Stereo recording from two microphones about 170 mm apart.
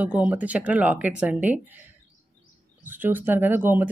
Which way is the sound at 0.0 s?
10° right (ahead or behind).